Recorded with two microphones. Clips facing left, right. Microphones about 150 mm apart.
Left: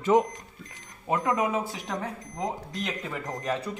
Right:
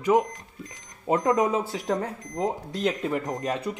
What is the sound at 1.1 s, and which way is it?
Speech, 35° right (ahead or behind).